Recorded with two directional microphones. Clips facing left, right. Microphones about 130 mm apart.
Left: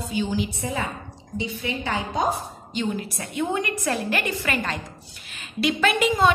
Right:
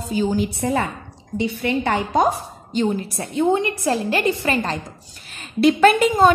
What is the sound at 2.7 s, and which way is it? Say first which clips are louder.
A woman's voice: right 6 dB; 40° right (ahead or behind).